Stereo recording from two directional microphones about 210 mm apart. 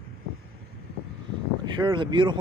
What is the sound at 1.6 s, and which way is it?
Speech, 20° right (ahead or behind).